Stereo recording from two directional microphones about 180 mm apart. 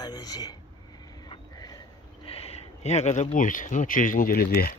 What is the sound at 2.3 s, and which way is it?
Speech, 35° left (ahead or behind).